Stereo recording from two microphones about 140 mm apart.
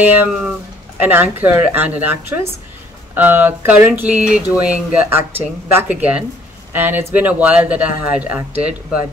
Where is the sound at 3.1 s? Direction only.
15° right (ahead or behind).